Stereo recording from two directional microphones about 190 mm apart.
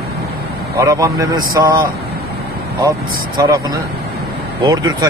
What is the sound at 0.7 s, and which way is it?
Speech, 15° right (ahead or behind).